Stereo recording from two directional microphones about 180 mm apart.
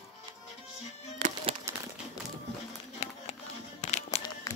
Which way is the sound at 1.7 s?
15° right (ahead or behind).